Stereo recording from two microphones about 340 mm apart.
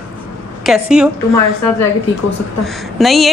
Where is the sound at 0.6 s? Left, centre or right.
Centre.